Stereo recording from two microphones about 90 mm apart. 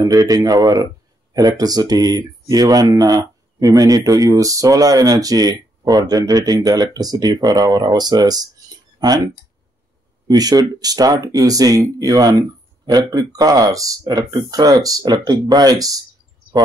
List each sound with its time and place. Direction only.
0.0 s speech: 40° right (ahead or behind)